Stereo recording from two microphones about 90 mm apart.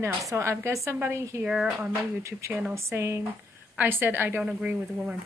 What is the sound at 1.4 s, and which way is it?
Speech, 10° right (ahead or behind).